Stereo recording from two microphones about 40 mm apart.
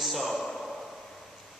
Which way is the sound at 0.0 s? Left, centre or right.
Centre.